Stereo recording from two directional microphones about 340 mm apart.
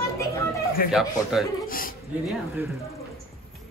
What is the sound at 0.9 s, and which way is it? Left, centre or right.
Speech, centre.